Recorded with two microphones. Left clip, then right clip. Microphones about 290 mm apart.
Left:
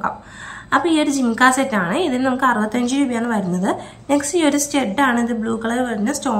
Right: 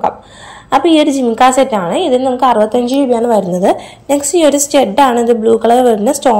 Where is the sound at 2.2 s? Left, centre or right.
Left.